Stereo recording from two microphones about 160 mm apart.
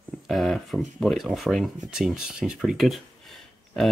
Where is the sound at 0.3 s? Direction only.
Centre (ahead or behind).